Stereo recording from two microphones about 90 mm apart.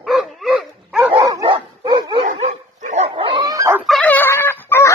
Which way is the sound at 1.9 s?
50° right (ahead or behind).